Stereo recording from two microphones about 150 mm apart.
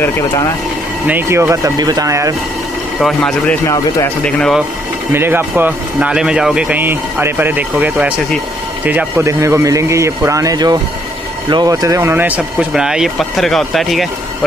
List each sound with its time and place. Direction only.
1.0 s a man's voice: 10° right (ahead or behind)
3.0 s speech: 5° left (ahead or behind)
3.6 s speech: 20° left (ahead or behind)
4.2 s speech: 5° left (ahead or behind)
5.1 s a man's voice: 15° right (ahead or behind)